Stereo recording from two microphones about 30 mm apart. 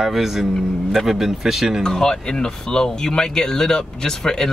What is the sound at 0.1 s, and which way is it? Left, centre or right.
Speech, centre.